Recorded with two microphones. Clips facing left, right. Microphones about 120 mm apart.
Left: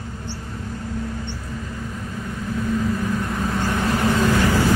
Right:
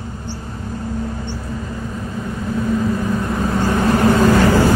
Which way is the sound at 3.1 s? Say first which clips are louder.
Right 4 dB; 40° right (ahead or behind).